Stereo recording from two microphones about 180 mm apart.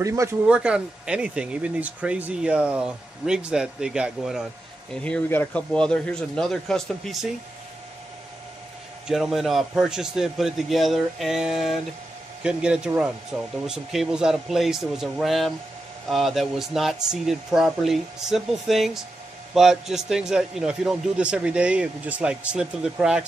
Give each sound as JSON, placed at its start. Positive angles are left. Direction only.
{"t": 0.0, "sound": "speech", "side_deg": -15}
{"t": 0.5, "sound": "speech", "side_deg": -5}
{"t": 5.0, "sound": "speech", "side_deg": 10}
{"t": 9.0, "sound": "speech", "side_deg": -5}